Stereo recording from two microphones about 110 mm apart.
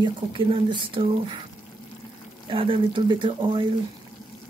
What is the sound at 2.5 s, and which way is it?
Speech, 55° right (ahead or behind).